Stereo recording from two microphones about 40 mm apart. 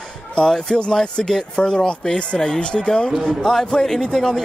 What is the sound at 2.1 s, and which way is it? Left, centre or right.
Speech, left.